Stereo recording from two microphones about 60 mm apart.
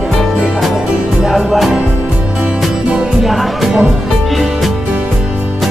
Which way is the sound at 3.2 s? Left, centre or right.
Centre.